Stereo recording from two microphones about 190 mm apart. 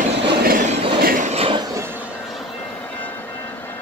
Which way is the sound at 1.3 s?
30° right (ahead or behind).